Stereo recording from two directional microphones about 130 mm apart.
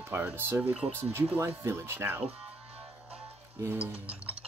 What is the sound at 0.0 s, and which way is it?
Speech, 15° right (ahead or behind).